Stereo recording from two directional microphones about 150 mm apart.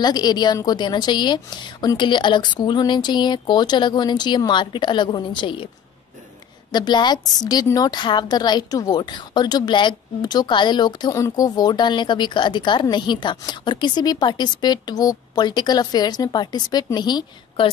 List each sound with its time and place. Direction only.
0.0 s a woman's voice: 25° left (ahead or behind)
6.7 s a woman's voice: 30° left (ahead or behind)